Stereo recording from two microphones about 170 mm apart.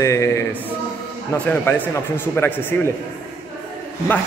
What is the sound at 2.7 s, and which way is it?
Speech, 15° left (ahead or behind).